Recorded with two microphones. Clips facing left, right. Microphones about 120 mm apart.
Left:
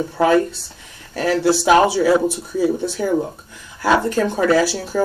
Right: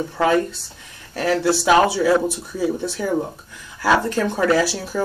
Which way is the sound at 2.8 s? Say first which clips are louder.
Left 3 dB; 25° left (ahead or behind).